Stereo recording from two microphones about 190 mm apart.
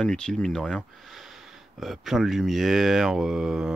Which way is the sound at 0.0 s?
5° left (ahead or behind).